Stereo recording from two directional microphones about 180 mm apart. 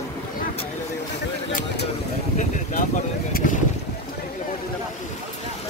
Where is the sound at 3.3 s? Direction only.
55° left (ahead or behind).